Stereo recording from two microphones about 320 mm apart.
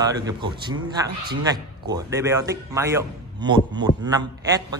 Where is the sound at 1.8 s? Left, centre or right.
Centre.